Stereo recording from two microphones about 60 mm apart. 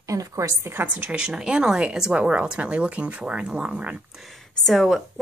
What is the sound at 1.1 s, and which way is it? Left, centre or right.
Speech, centre.